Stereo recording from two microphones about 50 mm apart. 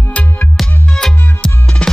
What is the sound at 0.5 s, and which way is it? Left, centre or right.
Music, centre.